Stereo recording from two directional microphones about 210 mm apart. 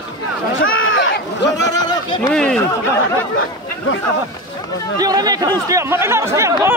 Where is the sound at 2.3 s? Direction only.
5° left (ahead or behind).